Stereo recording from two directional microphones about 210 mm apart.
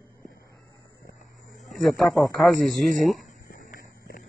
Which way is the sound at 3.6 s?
40° left (ahead or behind).